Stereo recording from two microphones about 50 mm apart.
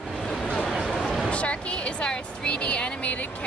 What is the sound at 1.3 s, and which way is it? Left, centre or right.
Speech, left.